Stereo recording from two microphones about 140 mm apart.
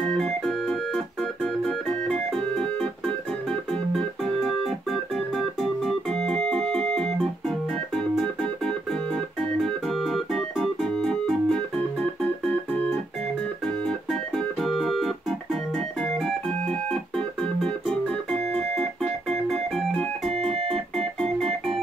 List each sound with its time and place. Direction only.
0.0 s organ: 5° left (ahead or behind)
13.8 s organ: 5° left (ahead or behind)
20.2 s organ: 50° right (ahead or behind)
20.9 s organ: 5° left (ahead or behind)